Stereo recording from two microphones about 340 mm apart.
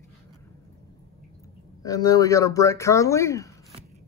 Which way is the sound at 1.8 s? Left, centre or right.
Centre.